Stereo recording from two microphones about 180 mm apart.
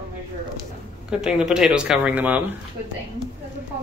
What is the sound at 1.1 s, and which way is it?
Speech, 5° right (ahead or behind).